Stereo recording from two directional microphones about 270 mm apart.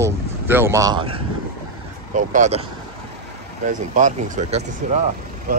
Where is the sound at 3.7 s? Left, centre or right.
Right.